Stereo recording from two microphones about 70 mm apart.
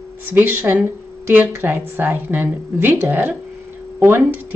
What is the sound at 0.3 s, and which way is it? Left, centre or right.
Speech, right.